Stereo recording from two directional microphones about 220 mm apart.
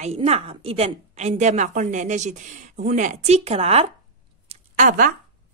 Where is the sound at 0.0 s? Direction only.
30° right (ahead or behind).